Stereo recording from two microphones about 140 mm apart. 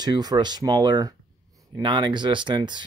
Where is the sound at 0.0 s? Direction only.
30° right (ahead or behind).